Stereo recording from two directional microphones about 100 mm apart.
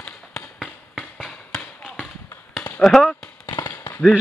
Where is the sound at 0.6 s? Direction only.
5° right (ahead or behind).